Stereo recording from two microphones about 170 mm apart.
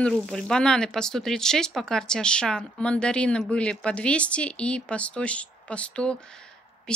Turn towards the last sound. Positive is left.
turn(degrees=5)  # may be behind; listen again after turning